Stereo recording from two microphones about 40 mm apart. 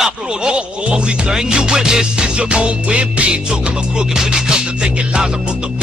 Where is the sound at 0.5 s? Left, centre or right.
Right.